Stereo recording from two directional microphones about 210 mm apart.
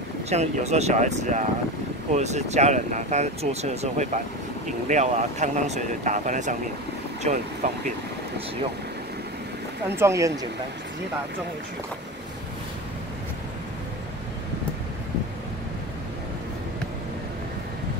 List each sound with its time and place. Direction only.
0.3 s speech: 30° right (ahead or behind)
9.8 s speech: 10° right (ahead or behind)